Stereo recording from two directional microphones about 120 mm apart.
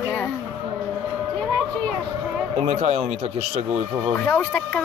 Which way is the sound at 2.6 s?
65° right (ahead or behind).